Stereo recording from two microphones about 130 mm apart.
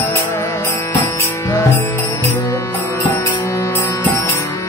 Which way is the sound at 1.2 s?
20° left (ahead or behind).